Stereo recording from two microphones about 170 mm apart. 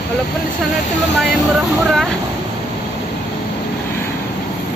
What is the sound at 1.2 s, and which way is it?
Speech, centre (ahead or behind).